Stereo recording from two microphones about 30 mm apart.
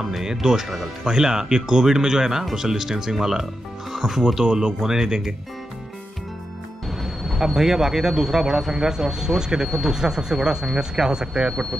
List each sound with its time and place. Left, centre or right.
0.2 s speech: centre
7.0 s speech: centre; by 11.5 s right